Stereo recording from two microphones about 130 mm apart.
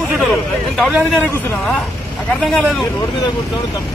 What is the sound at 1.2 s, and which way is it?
Speech, 20° left (ahead or behind).